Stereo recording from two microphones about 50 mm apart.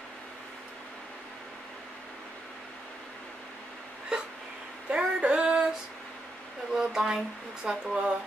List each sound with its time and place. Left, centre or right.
4.1 s a sound: centre
4.8 s female singing: right
6.7 s speech: centre
7.6 s speech: right